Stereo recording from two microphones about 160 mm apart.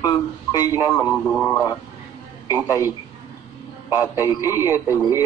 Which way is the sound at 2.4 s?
20° left (ahead or behind).